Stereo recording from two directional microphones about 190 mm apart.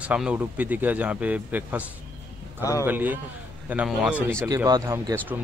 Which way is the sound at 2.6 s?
15° left (ahead or behind).